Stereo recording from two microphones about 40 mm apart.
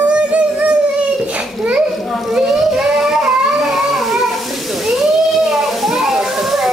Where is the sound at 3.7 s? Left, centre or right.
Centre.